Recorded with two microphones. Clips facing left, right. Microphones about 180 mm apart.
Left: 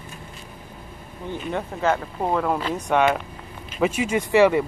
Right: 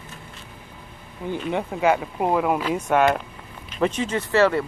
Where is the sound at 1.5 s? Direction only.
10° right (ahead or behind); by 4.6 s 15° left (ahead or behind).